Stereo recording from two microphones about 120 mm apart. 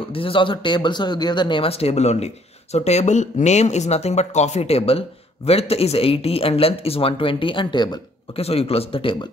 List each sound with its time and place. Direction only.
0.1 s speech: 45° left (ahead or behind)
8.4 s speech: 55° left (ahead or behind)